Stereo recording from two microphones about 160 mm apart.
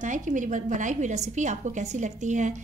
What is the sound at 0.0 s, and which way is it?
A woman's voice, 50° right (ahead or behind).